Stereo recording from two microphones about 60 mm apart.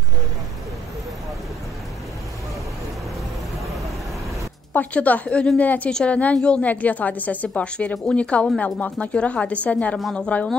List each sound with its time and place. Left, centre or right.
4.7 s a woman's voice: left